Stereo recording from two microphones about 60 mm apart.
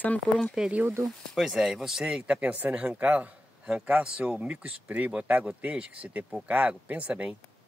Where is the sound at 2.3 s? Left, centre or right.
Right.